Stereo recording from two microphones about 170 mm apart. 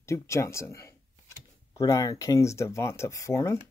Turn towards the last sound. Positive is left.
turn(degrees=15)  # may be behind; listen again after turning